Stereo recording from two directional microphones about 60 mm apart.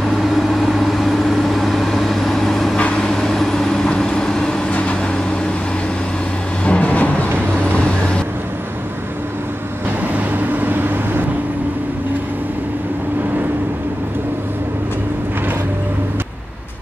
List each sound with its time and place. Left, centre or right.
0.2 s vehicle: centre; by 5.2 s left
6.6 s vehicle: left
10.1 s vehicle: right